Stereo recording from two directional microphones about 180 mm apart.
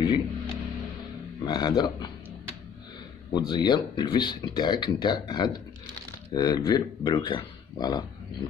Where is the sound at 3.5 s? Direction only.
25° left (ahead or behind).